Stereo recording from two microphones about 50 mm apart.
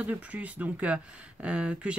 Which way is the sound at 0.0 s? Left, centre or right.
Right.